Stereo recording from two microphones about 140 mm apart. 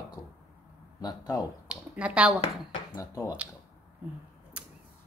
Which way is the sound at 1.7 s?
10° right (ahead or behind).